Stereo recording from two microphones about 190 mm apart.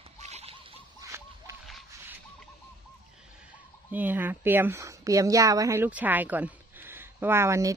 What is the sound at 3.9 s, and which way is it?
Speech, 10° right (ahead or behind).